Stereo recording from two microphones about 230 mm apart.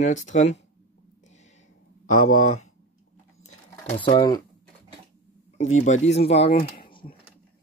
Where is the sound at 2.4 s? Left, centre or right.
Left.